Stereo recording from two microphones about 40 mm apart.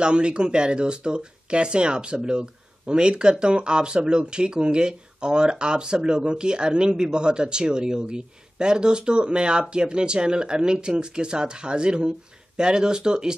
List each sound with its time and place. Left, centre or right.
0.0 s speech: right